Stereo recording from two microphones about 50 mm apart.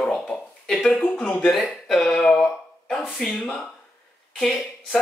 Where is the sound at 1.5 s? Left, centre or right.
Centre.